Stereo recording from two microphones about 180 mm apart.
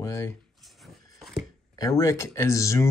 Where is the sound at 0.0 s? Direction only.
15° left (ahead or behind).